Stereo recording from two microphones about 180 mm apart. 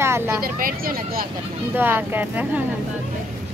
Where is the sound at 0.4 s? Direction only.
50° right (ahead or behind).